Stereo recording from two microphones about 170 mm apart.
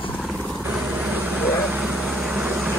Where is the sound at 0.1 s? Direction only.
5° left (ahead or behind).